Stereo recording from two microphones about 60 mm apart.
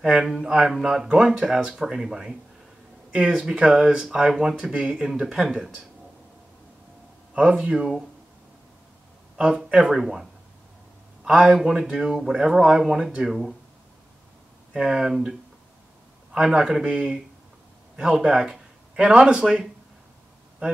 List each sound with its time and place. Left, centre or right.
0.0 s speech: centre
3.1 s speech: centre
7.3 s speech: centre
9.4 s speech: centre
11.4 s speech: centre
14.7 s a man's voice: centre
16.8 s speech: right